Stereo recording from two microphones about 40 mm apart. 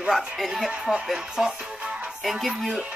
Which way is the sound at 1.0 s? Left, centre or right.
Centre.